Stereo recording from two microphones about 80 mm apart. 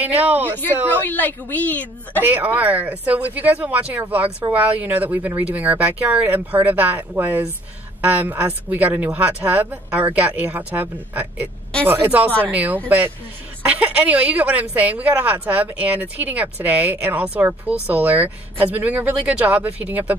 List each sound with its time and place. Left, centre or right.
0.0 s speech: right
1.0 s a woman's voice: left
2.2 s speech: right